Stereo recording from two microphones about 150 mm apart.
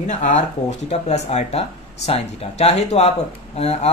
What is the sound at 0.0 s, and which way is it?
Speech, 55° left (ahead or behind).